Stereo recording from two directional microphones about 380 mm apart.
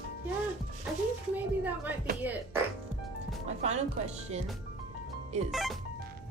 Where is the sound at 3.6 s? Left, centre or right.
Centre.